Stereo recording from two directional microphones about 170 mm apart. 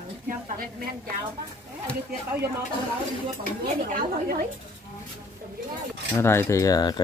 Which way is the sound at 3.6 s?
60° right (ahead or behind).